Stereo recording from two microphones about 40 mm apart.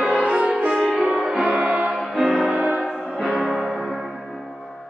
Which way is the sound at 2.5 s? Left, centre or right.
Right.